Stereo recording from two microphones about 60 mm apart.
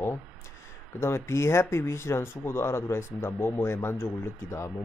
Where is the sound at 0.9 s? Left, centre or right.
Left.